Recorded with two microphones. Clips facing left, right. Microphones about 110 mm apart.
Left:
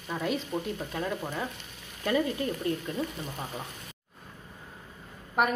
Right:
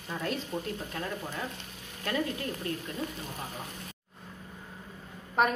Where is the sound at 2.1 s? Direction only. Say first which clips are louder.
Left 4 dB; 25° left (ahead or behind).